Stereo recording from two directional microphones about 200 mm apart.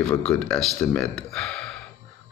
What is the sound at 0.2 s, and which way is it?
Speech, 5° left (ahead or behind).